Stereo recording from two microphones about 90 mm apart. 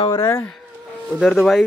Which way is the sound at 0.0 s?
55° left (ahead or behind).